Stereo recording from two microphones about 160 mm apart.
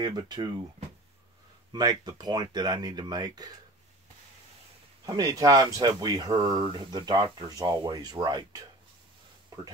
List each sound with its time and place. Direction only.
0.0 s speech: 25° right (ahead or behind)
1.7 s speech: 25° right (ahead or behind)
5.0 s speech: 20° right (ahead or behind)